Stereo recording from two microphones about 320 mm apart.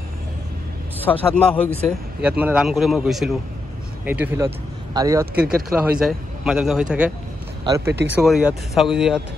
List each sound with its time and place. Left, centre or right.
1.3 s a man's voice: centre
7.9 s speech: right
8.2 s speech: centre